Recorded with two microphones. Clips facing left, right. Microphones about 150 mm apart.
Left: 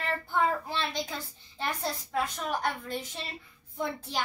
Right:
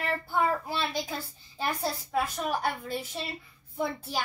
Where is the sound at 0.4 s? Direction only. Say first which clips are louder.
Right 1 dB; 10° right (ahead or behind).